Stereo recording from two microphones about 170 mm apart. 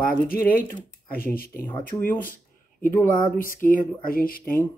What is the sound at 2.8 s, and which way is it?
Speech, 50° left (ahead or behind).